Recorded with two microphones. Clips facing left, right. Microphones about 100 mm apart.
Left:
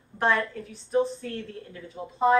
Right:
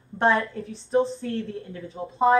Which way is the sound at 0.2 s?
30° right (ahead or behind).